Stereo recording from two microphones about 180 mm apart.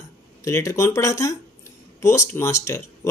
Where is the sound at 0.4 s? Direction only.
15° left (ahead or behind).